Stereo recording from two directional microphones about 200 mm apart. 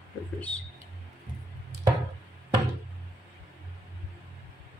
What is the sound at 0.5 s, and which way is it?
Speech, 5° left (ahead or behind).